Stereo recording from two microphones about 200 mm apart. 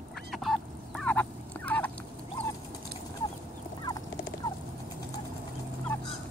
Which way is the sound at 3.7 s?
20° left (ahead or behind).